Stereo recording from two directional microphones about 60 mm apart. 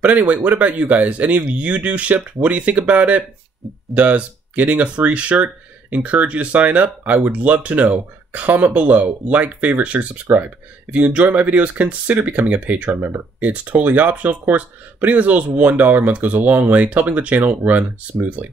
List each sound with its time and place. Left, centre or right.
0.0 s speech: right
12.9 s speech: right
13.4 s speech: right